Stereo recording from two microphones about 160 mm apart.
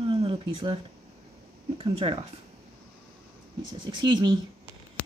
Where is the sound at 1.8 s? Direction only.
30° right (ahead or behind).